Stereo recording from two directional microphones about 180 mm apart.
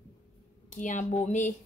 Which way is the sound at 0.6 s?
45° left (ahead or behind).